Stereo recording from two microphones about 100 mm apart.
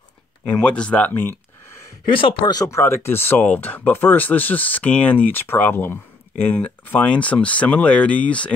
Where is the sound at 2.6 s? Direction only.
25° left (ahead or behind).